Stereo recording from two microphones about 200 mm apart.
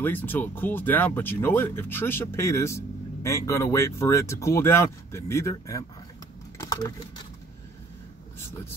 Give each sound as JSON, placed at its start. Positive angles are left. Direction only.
{"t": 0.0, "sound": "speech", "side_deg": 10}
{"t": 6.6, "sound": "typing", "side_deg": 20}